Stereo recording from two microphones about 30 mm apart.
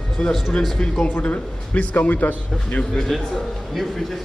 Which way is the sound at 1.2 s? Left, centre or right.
Left.